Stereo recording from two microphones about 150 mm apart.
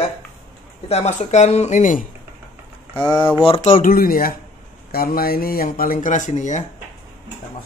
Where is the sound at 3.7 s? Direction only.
70° left (ahead or behind); by 6.6 s 55° left (ahead or behind).